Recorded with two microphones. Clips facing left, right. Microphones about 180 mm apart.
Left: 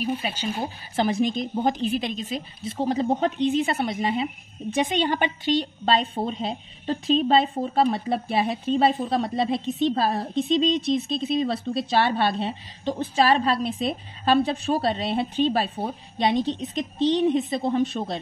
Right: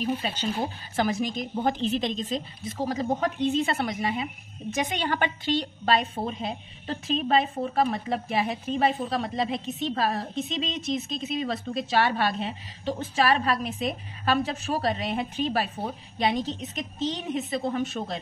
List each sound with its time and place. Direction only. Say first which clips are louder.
0.0 s speech: left 1 dB; 10° left (ahead or behind)
1.0 s speech: left 5 dB; 30° left (ahead or behind)
1.6 s speech: left 1 dB; 15° left (ahead or behind)
2.6 s speech: left 7 dB; 30° left (ahead or behind)
3.9 s speech: left 4 dB; 30° left (ahead or behind)
5.9 s a woman's voice: left 1 dB; 30° left (ahead or behind)